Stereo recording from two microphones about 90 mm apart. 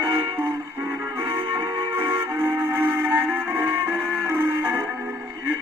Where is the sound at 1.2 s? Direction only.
30° right (ahead or behind).